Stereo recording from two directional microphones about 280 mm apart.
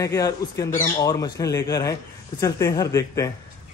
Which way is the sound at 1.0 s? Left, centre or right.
Centre.